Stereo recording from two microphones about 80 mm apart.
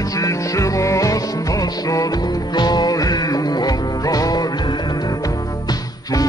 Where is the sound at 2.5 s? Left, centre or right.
Left.